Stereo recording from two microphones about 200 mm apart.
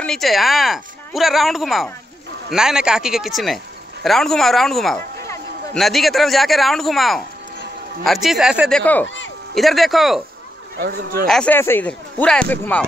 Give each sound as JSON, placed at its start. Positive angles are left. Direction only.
{"t": 0.0, "sound": "speech", "side_deg": 0}
{"t": 10.8, "sound": "speech", "side_deg": -55}
{"t": 11.2, "sound": "speech", "side_deg": 5}